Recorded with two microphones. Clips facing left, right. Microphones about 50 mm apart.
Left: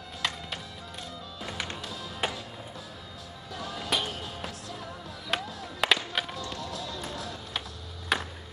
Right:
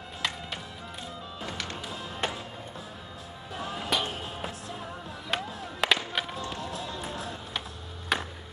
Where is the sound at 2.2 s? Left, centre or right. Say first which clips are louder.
Even; centre.